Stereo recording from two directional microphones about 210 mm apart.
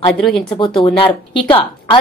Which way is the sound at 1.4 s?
20° left (ahead or behind).